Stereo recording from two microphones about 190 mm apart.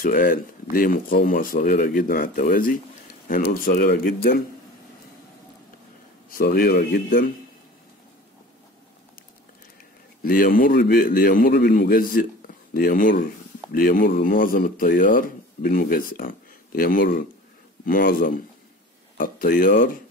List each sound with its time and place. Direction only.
0.0 s speech: 50° left (ahead or behind)
6.3 s speech: 50° left (ahead or behind)
10.2 s speech: 50° left (ahead or behind)